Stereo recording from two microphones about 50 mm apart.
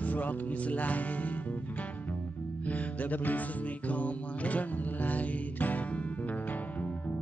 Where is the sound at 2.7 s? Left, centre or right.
Left.